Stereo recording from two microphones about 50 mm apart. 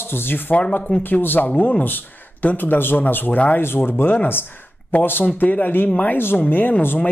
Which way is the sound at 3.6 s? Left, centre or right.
Left.